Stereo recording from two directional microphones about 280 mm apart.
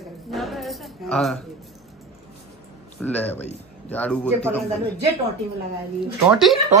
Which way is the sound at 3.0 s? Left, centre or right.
Centre.